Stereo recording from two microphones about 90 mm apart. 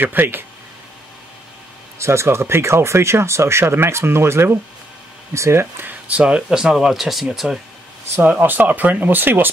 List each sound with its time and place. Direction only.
0.0 s speech: 20° right (ahead or behind)
2.0 s speech: 30° right (ahead or behind); by 7.6 s 5° right (ahead or behind)
8.2 s speech: 20° right (ahead or behind)